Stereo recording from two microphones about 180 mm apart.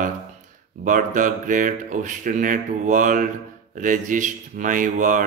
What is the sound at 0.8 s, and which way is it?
Speech, 45° right (ahead or behind).